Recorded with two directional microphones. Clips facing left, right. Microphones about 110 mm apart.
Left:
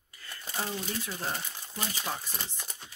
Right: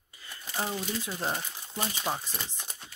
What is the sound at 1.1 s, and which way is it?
Speech, 25° right (ahead or behind).